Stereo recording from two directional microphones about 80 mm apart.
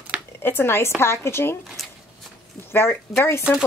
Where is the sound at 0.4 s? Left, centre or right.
Left.